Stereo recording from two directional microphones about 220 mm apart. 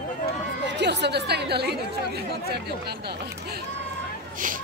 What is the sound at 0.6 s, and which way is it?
Speech, 50° right (ahead or behind).